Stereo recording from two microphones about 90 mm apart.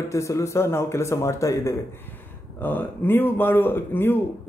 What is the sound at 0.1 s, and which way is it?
Speech, 35° left (ahead or behind).